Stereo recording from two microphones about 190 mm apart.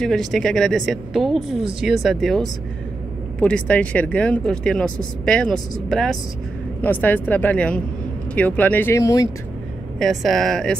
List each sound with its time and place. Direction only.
0.0 s speech: centre (ahead or behind); by 9.3 s 15° left (ahead or behind)
9.9 s speech: centre (ahead or behind)